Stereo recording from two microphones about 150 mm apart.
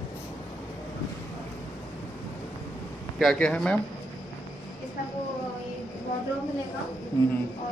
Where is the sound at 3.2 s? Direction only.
5° left (ahead or behind).